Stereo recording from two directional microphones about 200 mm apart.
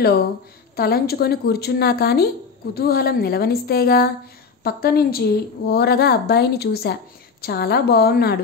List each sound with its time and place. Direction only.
0.7 s a woman's voice: 50° left (ahead or behind)